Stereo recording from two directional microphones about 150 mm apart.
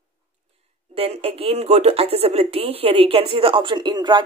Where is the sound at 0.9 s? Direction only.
40° right (ahead or behind).